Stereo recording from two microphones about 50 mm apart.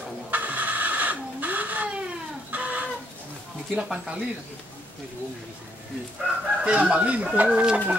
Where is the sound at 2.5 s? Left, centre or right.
Right.